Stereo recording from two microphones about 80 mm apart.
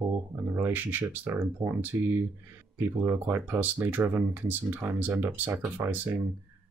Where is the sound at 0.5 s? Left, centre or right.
Right.